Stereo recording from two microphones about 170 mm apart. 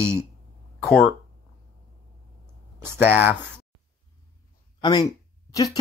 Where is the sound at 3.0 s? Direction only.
10° right (ahead or behind).